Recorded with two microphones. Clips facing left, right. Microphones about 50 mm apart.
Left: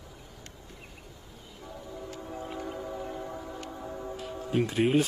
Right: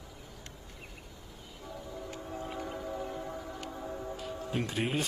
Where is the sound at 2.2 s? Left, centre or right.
Centre.